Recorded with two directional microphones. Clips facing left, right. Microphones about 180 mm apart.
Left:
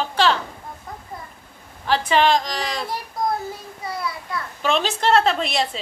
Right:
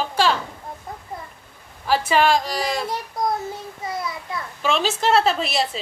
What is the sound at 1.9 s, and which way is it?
Speech, 10° right (ahead or behind).